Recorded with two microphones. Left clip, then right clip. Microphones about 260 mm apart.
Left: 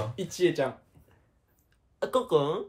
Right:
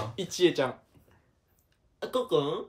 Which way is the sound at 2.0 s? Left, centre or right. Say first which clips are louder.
Left 2 dB; centre.